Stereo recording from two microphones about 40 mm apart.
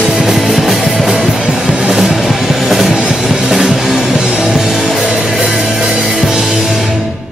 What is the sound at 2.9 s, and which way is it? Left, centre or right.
Music, centre.